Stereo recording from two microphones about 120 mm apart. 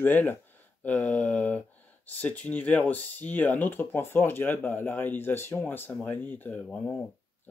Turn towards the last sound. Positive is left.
turn(degrees=15)  # may be behind; listen again after turning